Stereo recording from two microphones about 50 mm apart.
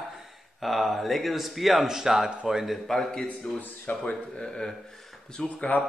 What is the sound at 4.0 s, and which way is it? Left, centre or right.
Speech, centre.